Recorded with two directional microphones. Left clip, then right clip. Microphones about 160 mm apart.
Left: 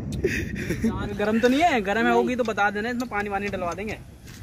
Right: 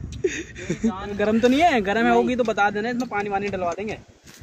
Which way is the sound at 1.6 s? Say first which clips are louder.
Right 2 dB; 45° right (ahead or behind).